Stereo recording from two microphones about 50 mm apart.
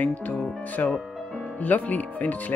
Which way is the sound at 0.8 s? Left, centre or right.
Left.